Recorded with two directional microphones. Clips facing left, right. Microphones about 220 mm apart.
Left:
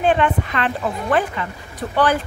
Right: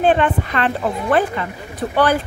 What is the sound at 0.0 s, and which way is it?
Speech, 35° right (ahead or behind).